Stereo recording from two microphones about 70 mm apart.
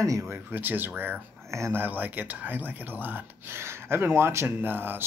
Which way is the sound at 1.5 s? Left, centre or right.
Right.